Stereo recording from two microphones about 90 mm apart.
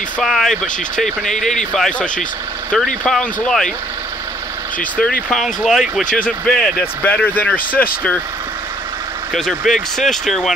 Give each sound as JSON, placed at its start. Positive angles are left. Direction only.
{"t": 0.2, "sound": "speech", "side_deg": 0}
{"t": 3.1, "sound": "speech", "side_deg": 5}
{"t": 4.7, "sound": "speech", "side_deg": 10}
{"t": 6.1, "sound": "speech", "side_deg": 15}
{"t": 9.3, "sound": "speech", "side_deg": 5}